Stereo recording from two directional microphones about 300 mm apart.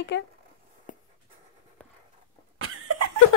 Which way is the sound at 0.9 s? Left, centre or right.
Left.